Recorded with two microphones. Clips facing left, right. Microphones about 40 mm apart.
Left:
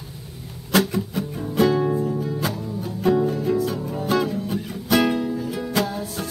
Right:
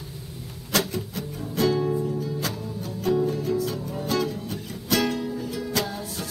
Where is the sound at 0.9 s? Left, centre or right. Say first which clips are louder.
Left 6 dB; centre.